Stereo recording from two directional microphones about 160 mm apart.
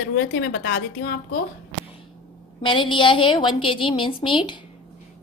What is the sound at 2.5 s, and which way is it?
A woman's voice, 30° left (ahead or behind).